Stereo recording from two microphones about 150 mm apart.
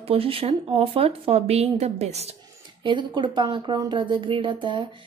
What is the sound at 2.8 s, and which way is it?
A woman's voice, 30° right (ahead or behind).